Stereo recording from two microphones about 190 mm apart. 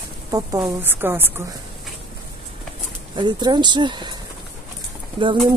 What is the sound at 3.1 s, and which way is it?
Speech, 25° right (ahead or behind).